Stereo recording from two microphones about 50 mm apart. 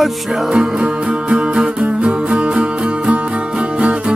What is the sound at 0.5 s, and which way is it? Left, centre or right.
Music, centre.